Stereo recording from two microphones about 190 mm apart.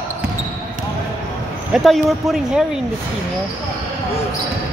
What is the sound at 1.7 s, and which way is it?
Speech, centre (ahead or behind).